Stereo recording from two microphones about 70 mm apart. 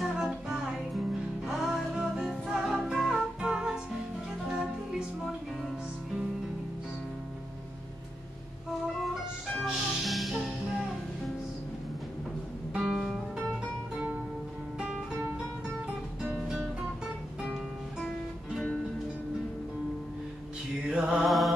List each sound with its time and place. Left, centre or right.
0.0 s music: centre
9.0 s music: centre
12.7 s music: centre
18.0 s music: centre
20.9 s mantra: centre
21.2 s mantra: centre